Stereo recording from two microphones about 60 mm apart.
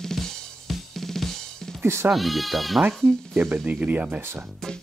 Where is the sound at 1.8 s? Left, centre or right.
Right.